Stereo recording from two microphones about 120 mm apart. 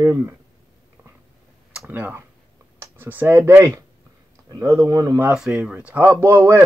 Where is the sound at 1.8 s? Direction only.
15° right (ahead or behind); by 5.2 s 30° right (ahead or behind).